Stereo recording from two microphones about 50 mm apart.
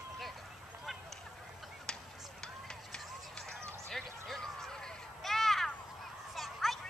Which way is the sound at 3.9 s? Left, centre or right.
Centre.